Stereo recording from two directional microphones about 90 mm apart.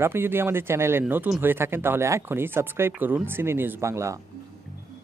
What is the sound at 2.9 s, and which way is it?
Speech, 15° right (ahead or behind).